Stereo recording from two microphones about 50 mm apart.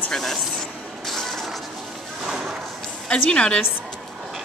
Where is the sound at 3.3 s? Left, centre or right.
Centre.